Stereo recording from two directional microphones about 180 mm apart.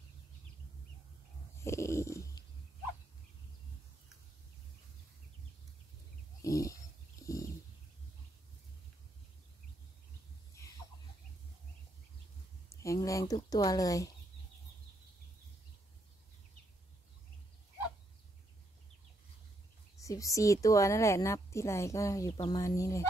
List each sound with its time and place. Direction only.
1.6 s stomach rumble: 15° left (ahead or behind)
6.4 s wild animals: 20° left (ahead or behind)
7.2 s a sound: 20° left (ahead or behind)
12.8 s speech: 15° left (ahead or behind)
20.0 s a woman's voice: 20° left (ahead or behind)